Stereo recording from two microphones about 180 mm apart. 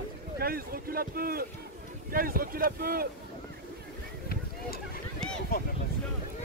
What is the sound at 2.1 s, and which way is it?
Speech, 55° right (ahead or behind).